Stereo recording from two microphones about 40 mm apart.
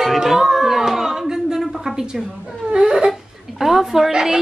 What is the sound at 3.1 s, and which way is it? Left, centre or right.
Speech, centre.